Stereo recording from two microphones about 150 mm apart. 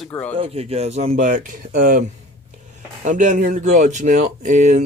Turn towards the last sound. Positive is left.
turn(degrees=-55)  # may be behind; listen again after turning